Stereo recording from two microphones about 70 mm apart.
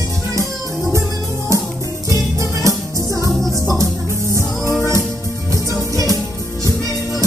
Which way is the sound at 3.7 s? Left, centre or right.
Right.